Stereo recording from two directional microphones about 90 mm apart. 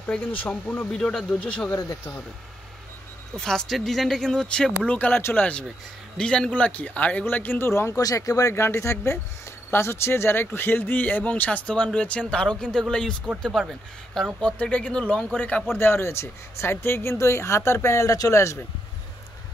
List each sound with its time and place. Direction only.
0.0 s speech: 20° left (ahead or behind)
1.7 s speech: 30° left (ahead or behind)
3.3 s speech: 5° left (ahead or behind); by 7.9 s 25° left (ahead or behind)
7.9 s speech: 40° left (ahead or behind); by 14.2 s centre (ahead or behind)
14.4 s speech: 15° left (ahead or behind)
15.8 s speech: 25° left (ahead or behind)